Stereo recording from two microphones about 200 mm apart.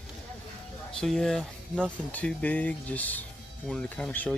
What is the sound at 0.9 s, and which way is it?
Speech, centre (ahead or behind).